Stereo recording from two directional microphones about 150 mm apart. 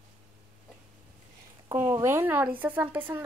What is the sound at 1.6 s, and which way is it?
Speech, 15° right (ahead or behind).